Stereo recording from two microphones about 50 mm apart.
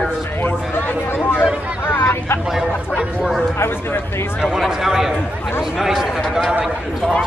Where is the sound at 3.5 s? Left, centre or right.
Left.